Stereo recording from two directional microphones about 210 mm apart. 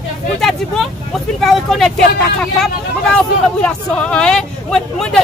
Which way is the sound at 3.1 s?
5° left (ahead or behind).